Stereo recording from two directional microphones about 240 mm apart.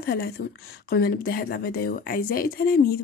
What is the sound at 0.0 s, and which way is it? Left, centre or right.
Speech, left.